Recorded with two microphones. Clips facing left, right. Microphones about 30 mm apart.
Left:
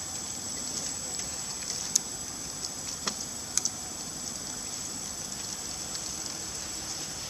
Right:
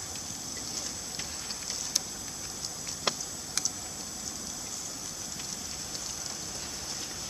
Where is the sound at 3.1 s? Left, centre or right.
Right.